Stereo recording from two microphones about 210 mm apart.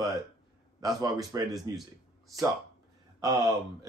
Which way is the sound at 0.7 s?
15° right (ahead or behind).